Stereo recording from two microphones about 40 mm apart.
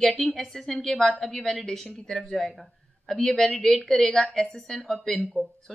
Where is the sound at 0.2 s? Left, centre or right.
Centre.